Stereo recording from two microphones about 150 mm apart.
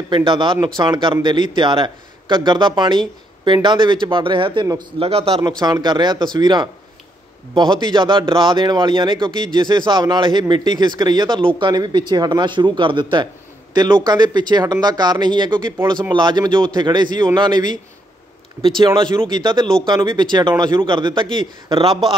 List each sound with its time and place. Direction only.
0.1 s a man's voice: 30° right (ahead or behind)
5.6 s a man's voice: 30° right (ahead or behind)